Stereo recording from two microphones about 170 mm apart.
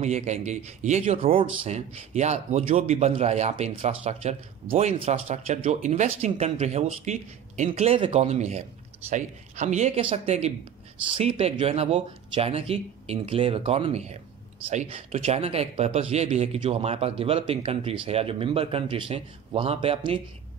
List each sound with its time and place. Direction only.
0.0 s a man's voice: 40° right (ahead or behind)